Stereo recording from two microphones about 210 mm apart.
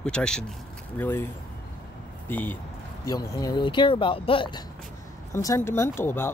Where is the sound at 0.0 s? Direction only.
5° left (ahead or behind).